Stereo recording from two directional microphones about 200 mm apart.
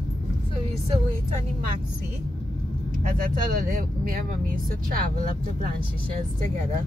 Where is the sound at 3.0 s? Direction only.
45° right (ahead or behind).